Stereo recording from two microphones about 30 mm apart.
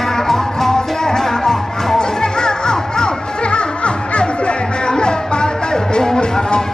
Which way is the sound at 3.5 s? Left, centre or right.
Left.